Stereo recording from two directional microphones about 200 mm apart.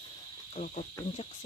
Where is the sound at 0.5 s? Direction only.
40° left (ahead or behind).